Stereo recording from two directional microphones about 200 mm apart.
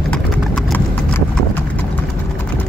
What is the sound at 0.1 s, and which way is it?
Clip-clop, 5° left (ahead or behind).